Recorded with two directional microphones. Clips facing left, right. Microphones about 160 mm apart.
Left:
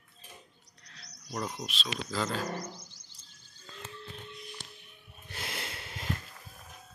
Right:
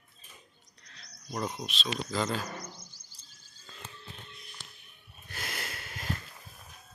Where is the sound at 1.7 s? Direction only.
5° left (ahead or behind).